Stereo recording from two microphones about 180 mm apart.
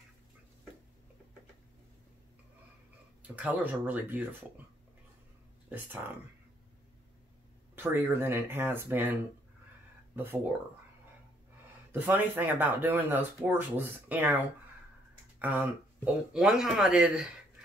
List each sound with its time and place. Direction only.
3.2 s speech: 10° right (ahead or behind)
7.7 s speech: 10° right (ahead or behind)
10.1 s speech: 10° right (ahead or behind)
11.9 s speech: 10° right (ahead or behind)